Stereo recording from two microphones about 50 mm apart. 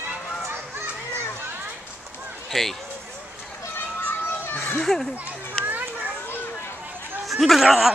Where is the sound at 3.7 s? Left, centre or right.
Left.